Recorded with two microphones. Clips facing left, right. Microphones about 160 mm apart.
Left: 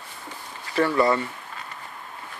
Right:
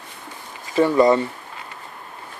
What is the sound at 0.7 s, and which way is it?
Speech, 20° right (ahead or behind).